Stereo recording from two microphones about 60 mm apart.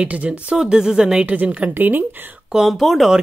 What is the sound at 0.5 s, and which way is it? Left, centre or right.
Speech, centre.